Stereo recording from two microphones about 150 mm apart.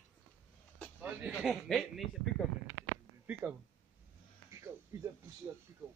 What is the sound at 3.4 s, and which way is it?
Speech, 15° right (ahead or behind).